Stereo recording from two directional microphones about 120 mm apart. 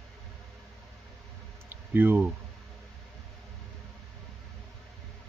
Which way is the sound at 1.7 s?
15° right (ahead or behind).